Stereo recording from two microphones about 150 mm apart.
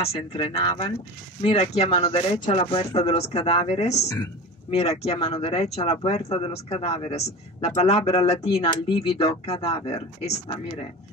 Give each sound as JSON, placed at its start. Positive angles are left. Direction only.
{"t": 0.0, "sound": "speech", "side_deg": 40}